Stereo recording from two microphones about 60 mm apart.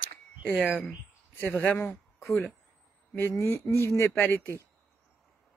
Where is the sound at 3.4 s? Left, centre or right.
Left.